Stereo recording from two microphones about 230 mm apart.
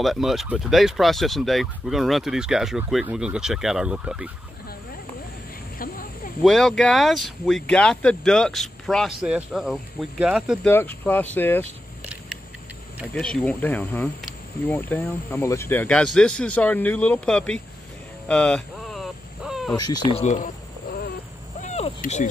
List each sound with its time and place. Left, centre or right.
0.0 s speech: centre
5.8 s a sound: left
6.4 s speech: centre
10.7 s speech: centre
13.1 s speech: centre
18.3 s a sound: centre
19.7 s speech: centre; by 20.5 s left
21.5 s vehicle: left